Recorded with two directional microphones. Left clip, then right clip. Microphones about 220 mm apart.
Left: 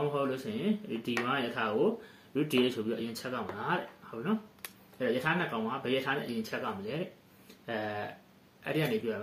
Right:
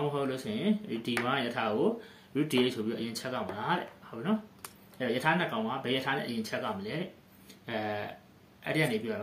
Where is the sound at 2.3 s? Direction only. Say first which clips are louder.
Even; 35° right (ahead or behind).